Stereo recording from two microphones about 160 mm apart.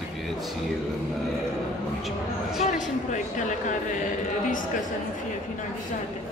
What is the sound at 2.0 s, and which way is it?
Speech, centre (ahead or behind).